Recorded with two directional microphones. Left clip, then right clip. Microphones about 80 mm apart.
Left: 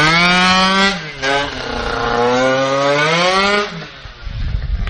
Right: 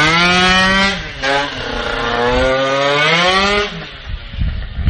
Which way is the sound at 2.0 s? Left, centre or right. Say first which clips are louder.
Left 1 dB; left.